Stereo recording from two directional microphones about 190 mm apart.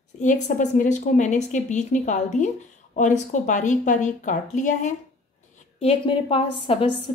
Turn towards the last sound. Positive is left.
turn(degrees=30)  # may be behind; listen again after turning